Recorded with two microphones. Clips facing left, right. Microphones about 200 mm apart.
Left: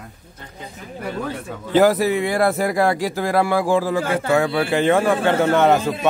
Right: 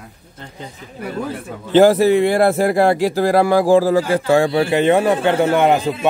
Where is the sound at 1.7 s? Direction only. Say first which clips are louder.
Right 5 dB; 30° right (ahead or behind).